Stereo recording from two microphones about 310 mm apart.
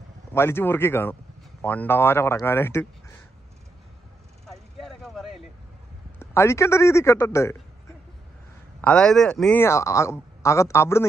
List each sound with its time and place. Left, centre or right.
0.3 s speech: centre
4.5 s a sound: centre
6.1 s speech: centre
8.8 s speech: centre